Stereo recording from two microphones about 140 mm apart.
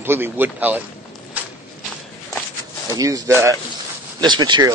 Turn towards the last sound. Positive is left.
turn(degrees=-30)  # may be behind; listen again after turning